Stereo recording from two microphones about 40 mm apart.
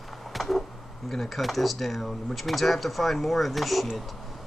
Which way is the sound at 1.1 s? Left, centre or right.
Centre.